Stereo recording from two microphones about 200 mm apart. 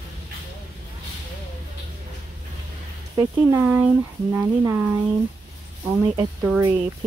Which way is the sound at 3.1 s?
10° right (ahead or behind).